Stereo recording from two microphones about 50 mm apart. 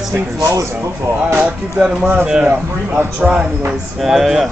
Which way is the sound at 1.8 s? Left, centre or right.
Right.